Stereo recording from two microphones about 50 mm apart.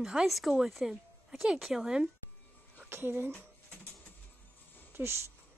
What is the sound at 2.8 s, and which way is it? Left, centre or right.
Speech, right.